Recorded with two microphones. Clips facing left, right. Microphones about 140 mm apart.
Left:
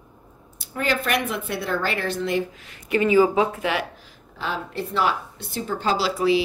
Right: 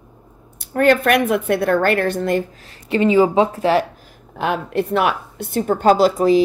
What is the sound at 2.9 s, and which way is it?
Speech, 25° right (ahead or behind).